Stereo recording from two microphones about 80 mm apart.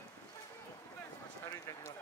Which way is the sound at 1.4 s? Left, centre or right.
Left.